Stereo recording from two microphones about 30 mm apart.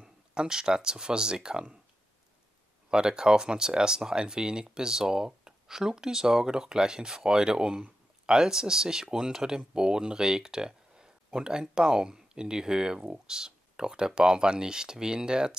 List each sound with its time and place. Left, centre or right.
0.3 s speech: right
2.9 s speech: right